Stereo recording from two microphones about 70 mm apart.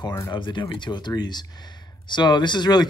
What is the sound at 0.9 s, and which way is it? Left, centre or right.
Speech, left.